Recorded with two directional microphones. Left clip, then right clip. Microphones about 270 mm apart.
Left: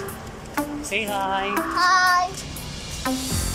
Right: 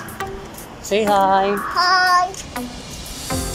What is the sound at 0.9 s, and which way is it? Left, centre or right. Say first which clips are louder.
Speech: right 11 dB; centre.